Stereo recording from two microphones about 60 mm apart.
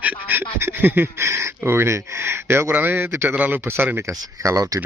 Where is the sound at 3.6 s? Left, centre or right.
Right.